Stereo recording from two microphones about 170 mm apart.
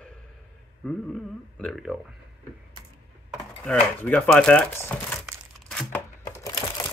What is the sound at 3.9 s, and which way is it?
Speech, 10° left (ahead or behind).